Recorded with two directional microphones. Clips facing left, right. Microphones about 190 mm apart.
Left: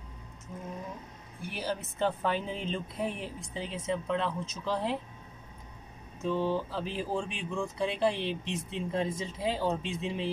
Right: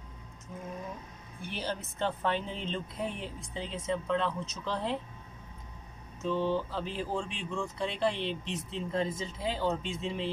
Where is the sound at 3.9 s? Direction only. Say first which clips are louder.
Right 1 dB; 10° left (ahead or behind).